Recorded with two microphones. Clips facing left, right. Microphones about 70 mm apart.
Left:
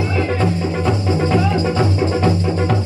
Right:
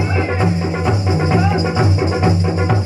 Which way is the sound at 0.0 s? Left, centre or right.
Right.